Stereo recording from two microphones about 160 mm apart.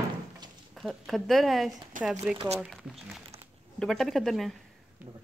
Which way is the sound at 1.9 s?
55° right (ahead or behind).